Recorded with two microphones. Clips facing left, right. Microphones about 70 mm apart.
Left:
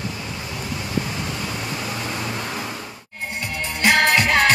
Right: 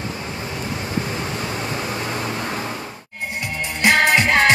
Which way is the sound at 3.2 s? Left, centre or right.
Centre.